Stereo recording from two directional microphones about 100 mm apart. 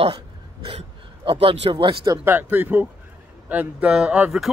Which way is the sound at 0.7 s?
70° right (ahead or behind).